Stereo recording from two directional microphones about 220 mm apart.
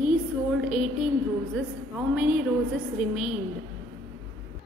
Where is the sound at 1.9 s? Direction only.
5° right (ahead or behind).